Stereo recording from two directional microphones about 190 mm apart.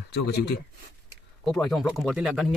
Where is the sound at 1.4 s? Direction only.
Centre (ahead or behind).